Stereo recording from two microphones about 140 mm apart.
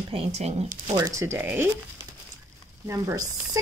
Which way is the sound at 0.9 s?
20° right (ahead or behind).